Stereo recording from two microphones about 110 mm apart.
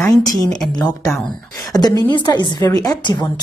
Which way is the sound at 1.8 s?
40° left (ahead or behind).